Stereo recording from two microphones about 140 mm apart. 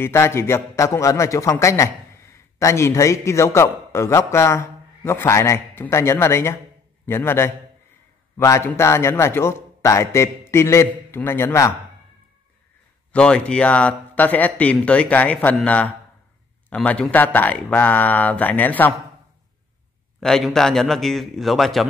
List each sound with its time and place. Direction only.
0.0 s a man's voice: 20° left (ahead or behind)
13.1 s speech: 5° left (ahead or behind)
20.2 s a man's voice: 5° left (ahead or behind)